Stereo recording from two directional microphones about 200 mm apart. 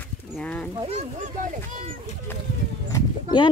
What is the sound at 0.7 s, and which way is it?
Speech, 30° right (ahead or behind).